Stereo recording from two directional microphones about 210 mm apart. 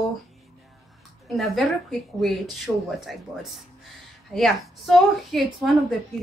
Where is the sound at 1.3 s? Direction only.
Centre (ahead or behind).